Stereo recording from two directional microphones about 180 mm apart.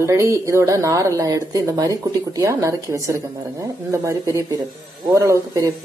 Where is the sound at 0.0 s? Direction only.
15° right (ahead or behind).